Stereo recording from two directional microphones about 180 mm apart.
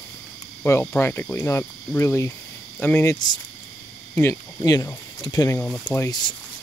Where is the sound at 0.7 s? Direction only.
15° left (ahead or behind).